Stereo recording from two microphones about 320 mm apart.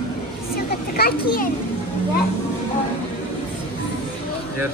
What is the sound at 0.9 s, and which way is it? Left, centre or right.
Speech, left.